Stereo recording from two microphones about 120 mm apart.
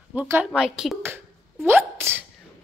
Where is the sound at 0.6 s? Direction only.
5° right (ahead or behind).